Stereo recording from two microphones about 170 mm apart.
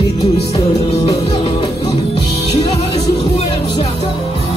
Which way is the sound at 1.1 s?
35° left (ahead or behind).